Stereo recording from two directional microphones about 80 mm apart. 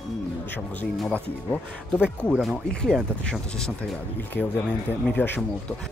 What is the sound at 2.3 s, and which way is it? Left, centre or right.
Speech, centre.